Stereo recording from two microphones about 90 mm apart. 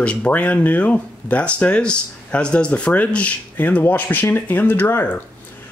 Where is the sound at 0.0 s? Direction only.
10° left (ahead or behind).